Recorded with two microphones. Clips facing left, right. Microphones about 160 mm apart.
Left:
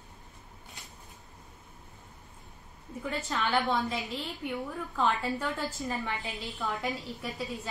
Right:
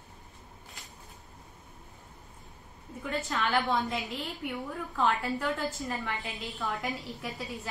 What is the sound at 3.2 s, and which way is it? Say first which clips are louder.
A woman's voice: even; centre (ahead or behind).